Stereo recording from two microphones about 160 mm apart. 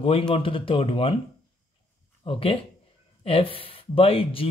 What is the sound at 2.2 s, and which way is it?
Speech, 35° left (ahead or behind).